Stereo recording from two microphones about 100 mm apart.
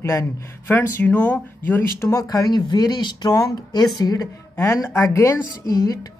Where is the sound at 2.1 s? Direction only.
35° left (ahead or behind).